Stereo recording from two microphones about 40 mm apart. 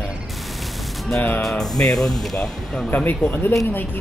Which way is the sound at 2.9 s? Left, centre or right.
Left.